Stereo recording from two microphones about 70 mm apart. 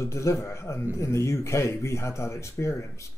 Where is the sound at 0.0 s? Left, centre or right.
Left.